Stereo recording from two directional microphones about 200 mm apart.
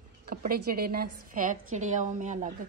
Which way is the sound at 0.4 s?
50° right (ahead or behind).